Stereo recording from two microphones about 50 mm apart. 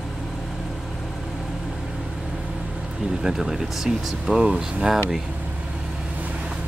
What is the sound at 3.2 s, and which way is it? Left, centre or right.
Speech, centre.